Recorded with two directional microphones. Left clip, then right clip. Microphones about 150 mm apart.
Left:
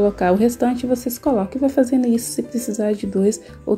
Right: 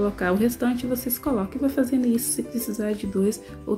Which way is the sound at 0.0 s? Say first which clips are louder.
Left 7 dB; 25° left (ahead or behind).